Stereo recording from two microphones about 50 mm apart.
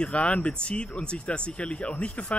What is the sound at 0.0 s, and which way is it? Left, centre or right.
Speech, left.